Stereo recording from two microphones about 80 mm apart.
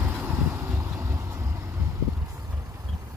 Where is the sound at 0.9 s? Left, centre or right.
Right.